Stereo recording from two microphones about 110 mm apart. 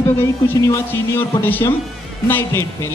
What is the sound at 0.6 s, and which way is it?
A man's voice, 25° left (ahead or behind).